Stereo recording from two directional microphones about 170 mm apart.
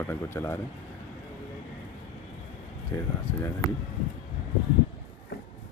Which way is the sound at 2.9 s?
20° left (ahead or behind).